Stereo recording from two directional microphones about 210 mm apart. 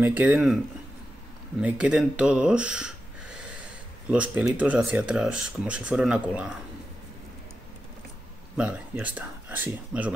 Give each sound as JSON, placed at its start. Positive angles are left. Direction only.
{"t": 0.0, "sound": "speech", "side_deg": -10}
{"t": 1.6, "sound": "speech", "side_deg": -5}
{"t": 8.5, "sound": "speech", "side_deg": -5}